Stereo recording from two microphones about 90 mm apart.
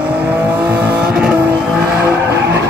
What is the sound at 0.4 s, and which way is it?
Vehicle, 20° right (ahead or behind).